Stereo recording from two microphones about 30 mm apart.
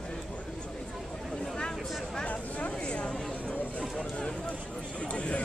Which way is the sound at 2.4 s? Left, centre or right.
Left.